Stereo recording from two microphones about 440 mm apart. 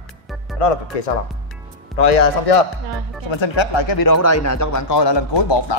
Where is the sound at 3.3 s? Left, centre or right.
Left.